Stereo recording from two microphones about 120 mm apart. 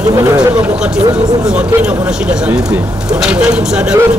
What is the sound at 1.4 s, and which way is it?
Speech, 10° right (ahead or behind).